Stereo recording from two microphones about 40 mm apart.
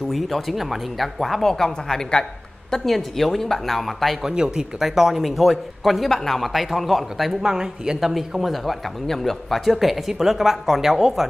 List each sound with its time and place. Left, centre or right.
0.1 s speech: centre
2.7 s speech: centre
4.2 s a woman's voice: centre
7.4 s a woman's voice: centre
9.0 s speech: centre